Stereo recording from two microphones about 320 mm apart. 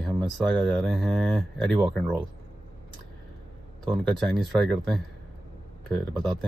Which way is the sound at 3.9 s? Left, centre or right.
Centre.